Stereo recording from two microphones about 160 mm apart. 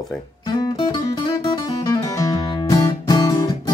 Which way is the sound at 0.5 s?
30° left (ahead or behind).